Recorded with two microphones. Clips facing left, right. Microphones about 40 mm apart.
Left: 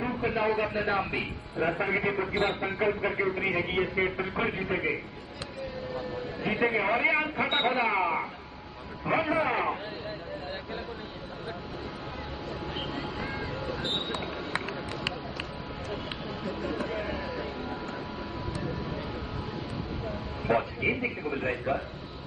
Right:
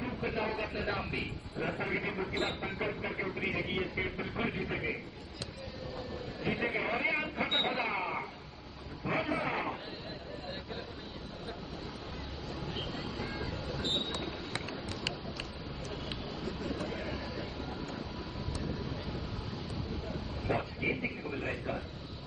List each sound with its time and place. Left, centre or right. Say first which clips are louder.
0.0 s a man's voice: left 7 dB; left
5.9 s a man's voice: left 5 dB; left
12.7 s a sound: left 5 dB; left
16.4 s speech: left 5 dB; left
18.5 s music: left 4 dB; centre
20.1 s a man's voice: left 8 dB; left